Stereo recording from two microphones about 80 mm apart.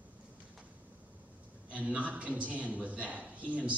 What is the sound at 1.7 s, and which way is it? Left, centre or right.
A man's voice, centre.